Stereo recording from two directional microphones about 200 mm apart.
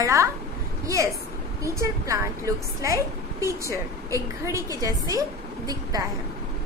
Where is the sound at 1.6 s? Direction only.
15° right (ahead or behind).